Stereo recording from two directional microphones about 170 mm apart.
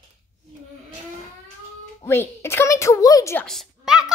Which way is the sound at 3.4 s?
Centre (ahead or behind).